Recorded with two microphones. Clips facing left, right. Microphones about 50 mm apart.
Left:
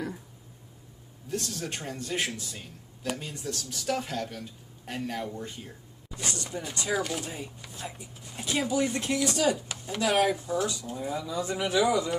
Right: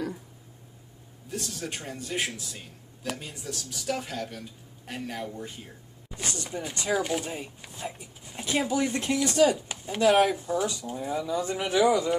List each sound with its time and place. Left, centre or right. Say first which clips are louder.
1.3 s a man's voice: left 1 dB; centre
6.1 s speech: right 1 dB; right
6.9 s speech: right 3 dB; centre
10.0 s a man's voice: right 4 dB; centre
11.2 s speech: right 1 dB; right